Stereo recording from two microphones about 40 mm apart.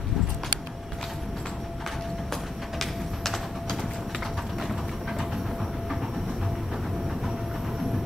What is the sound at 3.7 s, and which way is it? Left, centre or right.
Train, centre.